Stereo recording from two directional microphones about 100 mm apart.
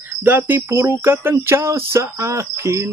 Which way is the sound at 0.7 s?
25° right (ahead or behind).